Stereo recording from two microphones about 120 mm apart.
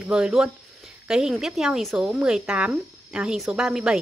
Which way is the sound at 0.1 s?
5° right (ahead or behind).